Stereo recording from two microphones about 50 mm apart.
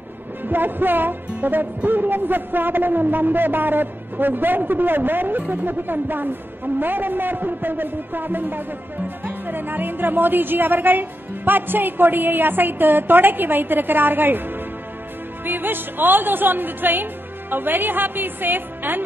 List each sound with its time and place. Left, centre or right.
0.5 s a woman's voice: right